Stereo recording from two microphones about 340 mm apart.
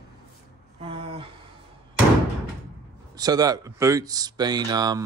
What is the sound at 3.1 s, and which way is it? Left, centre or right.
A man's voice, centre.